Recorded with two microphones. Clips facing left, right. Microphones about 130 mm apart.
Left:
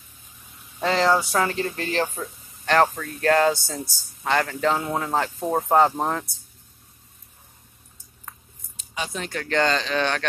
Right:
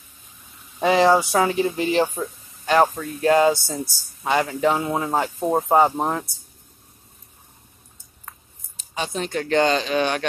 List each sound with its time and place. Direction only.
0.7 s speech: 15° right (ahead or behind)
8.7 s speech: 30° right (ahead or behind); by 10.2 s 15° right (ahead or behind)